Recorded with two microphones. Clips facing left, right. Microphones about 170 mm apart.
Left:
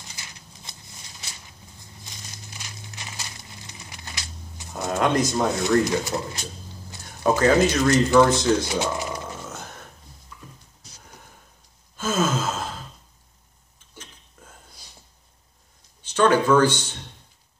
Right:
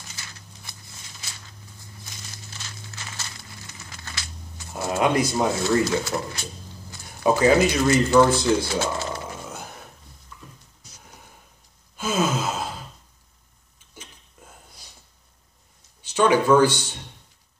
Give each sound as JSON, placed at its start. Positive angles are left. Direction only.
{"t": 0.0, "sound": "a sound", "side_deg": 20}
{"t": 4.9, "sound": "speech", "side_deg": -10}
{"t": 5.5, "sound": "speech", "side_deg": 20}
{"t": 7.2, "sound": "speech", "side_deg": -15}
{"t": 7.5, "sound": "speech", "side_deg": -5}
{"t": 8.6, "sound": "speech", "side_deg": 15}
{"t": 9.5, "sound": "a sound", "side_deg": -10}
{"t": 12.0, "sound": "gasp", "side_deg": -15}
{"t": 16.1, "sound": "a sound", "side_deg": -15}